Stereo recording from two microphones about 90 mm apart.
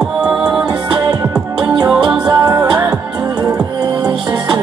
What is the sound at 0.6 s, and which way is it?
Music, 50° right (ahead or behind).